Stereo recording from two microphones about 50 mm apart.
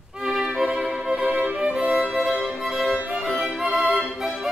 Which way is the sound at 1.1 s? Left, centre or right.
Right.